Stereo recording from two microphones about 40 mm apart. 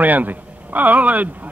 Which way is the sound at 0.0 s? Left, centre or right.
Right.